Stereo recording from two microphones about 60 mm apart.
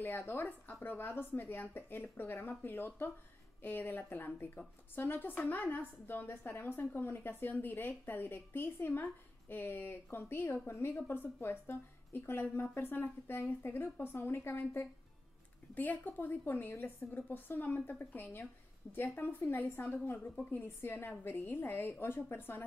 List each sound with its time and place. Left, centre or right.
0.0 s a woman's voice: left
15.7 s a woman's voice: left
17.6 s a woman's voice: left